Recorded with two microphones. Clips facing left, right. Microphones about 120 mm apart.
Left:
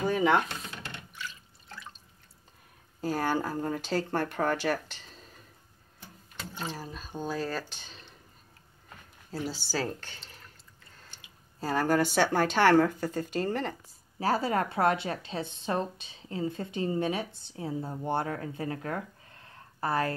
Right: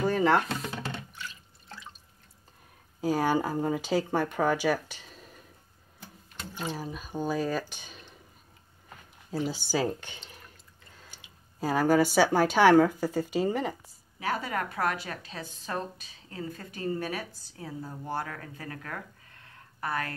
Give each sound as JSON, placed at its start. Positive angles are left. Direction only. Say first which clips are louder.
{"t": 0.0, "sound": "a sound", "louder": "right 1 dB", "side_deg": 0}
{"t": 3.0, "sound": "speech", "louder": "right 3 dB", "side_deg": -10}
{"t": 6.5, "sound": "speech", "louder": "right 3 dB", "side_deg": -10}
{"t": 8.8, "sound": "a sound", "louder": "right 1 dB", "side_deg": -15}
{"t": 9.7, "sound": "speech", "louder": "right 4 dB", "side_deg": -15}
{"t": 11.6, "sound": "speech", "louder": "right 3 dB", "side_deg": -5}
{"t": 14.2, "sound": "a woman's voice", "louder": "left 4 dB", "side_deg": 30}